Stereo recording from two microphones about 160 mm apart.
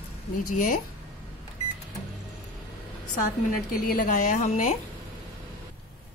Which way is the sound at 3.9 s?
55° left (ahead or behind).